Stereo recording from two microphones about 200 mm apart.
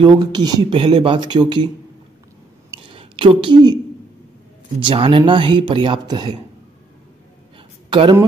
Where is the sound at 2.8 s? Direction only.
25° right (ahead or behind).